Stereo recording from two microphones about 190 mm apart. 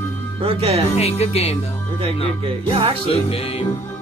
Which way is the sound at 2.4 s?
30° right (ahead or behind).